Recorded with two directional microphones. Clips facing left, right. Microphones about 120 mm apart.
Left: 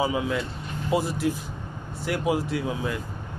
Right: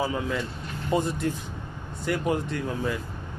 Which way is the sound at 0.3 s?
5° left (ahead or behind).